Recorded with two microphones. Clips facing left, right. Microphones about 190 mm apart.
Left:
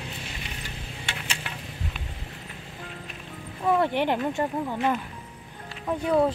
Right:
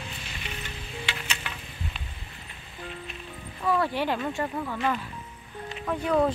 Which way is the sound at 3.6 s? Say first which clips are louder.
Left 3 dB; 20° left (ahead or behind).